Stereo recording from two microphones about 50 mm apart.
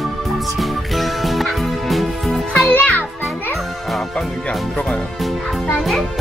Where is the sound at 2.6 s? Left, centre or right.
Left.